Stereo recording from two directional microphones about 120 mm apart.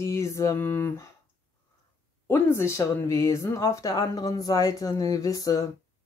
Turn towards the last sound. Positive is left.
turn(degrees=30)  # may be behind; listen again after turning